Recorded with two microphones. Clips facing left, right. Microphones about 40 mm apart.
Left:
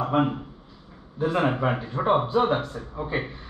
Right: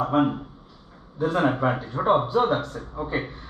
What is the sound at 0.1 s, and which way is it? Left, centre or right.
Speech, centre.